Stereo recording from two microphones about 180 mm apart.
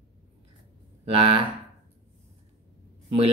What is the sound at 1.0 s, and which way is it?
Speech, 30° right (ahead or behind).